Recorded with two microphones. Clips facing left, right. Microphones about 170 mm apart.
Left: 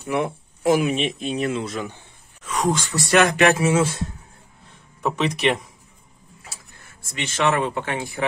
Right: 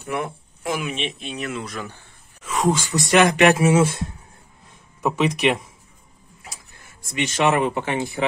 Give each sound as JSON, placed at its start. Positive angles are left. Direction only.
{"t": 0.0, "sound": "speech", "side_deg": 25}
{"t": 0.7, "sound": "speech", "side_deg": 40}
{"t": 2.4, "sound": "speech", "side_deg": -5}
{"t": 5.0, "sound": "speech", "side_deg": -10}
{"t": 7.2, "sound": "speech", "side_deg": -20}